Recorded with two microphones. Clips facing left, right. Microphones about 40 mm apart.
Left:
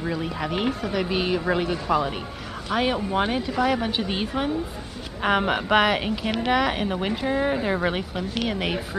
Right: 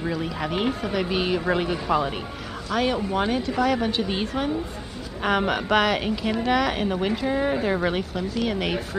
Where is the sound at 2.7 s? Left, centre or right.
Centre.